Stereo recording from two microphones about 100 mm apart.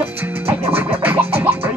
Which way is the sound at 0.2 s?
20° right (ahead or behind).